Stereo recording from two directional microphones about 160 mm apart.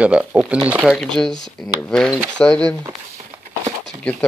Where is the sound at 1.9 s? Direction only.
5° left (ahead or behind).